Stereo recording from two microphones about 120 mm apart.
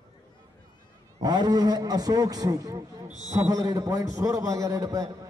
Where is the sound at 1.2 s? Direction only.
35° right (ahead or behind).